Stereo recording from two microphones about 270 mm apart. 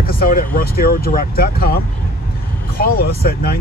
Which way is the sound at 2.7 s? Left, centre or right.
Left.